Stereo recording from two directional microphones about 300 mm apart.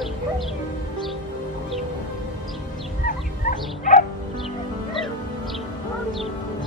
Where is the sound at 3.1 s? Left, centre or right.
Left.